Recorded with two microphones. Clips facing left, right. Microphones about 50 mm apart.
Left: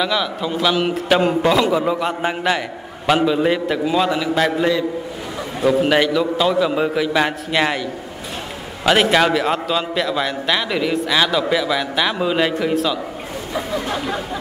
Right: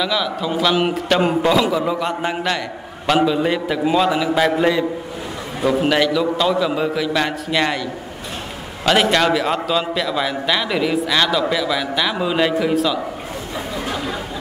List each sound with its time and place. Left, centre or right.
0.0 s a man's voice: centre
5.9 s a man's voice: centre
13.9 s a sound: left